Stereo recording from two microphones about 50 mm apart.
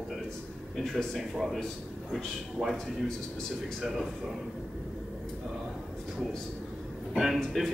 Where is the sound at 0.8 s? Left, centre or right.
Centre.